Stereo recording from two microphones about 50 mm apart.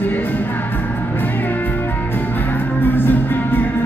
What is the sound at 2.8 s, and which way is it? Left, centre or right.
Music, left.